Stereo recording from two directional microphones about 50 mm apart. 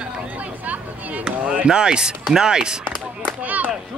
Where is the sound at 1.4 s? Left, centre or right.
Right.